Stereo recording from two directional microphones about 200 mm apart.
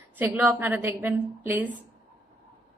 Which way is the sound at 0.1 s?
10° right (ahead or behind).